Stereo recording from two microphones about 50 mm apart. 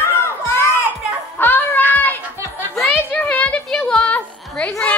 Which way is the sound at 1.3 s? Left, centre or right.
Left.